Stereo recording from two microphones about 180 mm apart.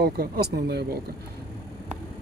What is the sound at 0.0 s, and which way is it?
Speech, 60° right (ahead or behind).